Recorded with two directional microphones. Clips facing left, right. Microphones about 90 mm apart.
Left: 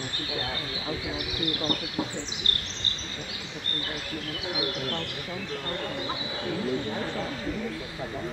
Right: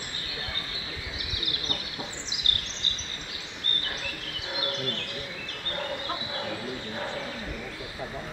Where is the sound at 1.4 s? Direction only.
40° left (ahead or behind).